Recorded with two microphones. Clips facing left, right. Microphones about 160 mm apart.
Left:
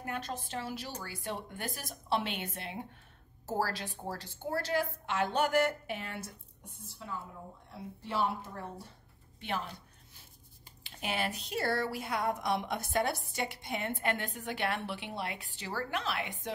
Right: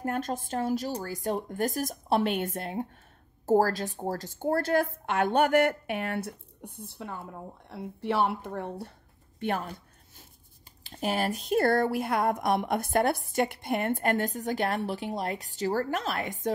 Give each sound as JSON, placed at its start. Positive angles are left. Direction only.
{"t": 0.0, "sound": "a woman's voice", "side_deg": -45}
{"t": 9.4, "sound": "a sound", "side_deg": -50}
{"t": 10.8, "sound": "speech", "side_deg": -40}